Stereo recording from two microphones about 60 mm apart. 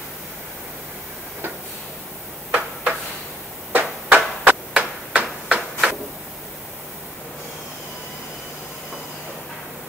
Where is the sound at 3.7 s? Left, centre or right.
Right.